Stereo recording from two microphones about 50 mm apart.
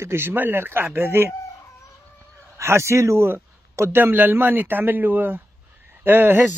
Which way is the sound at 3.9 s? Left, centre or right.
Right.